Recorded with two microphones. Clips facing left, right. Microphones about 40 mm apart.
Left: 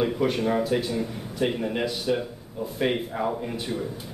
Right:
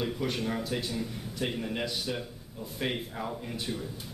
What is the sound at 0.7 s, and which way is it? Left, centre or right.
A man's voice, centre.